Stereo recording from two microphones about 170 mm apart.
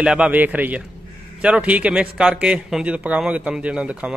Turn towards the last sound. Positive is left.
turn(degrees=-5)  # may be behind; listen again after turning